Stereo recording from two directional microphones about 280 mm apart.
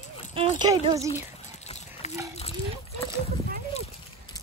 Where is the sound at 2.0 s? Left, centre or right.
Left.